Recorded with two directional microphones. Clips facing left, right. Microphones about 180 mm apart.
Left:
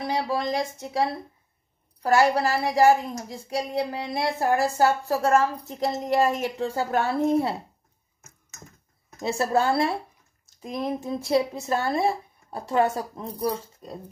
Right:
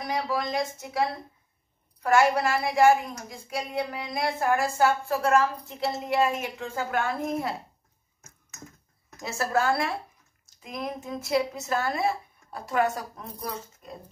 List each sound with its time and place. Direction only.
0.0 s a woman's voice: 30° left (ahead or behind)
2.0 s a woman's voice: 35° left (ahead or behind)
9.2 s a woman's voice: 30° left (ahead or behind)